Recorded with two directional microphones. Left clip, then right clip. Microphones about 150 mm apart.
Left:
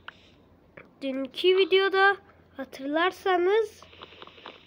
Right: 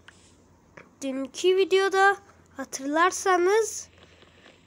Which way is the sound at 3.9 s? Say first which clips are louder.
Left 8 dB; 35° left (ahead or behind).